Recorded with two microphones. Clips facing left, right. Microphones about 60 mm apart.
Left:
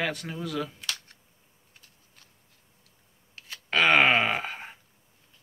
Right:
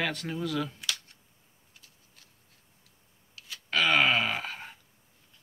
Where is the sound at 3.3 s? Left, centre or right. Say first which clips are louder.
Left 3 dB; left.